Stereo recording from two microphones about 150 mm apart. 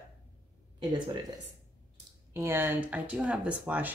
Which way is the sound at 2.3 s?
15° right (ahead or behind).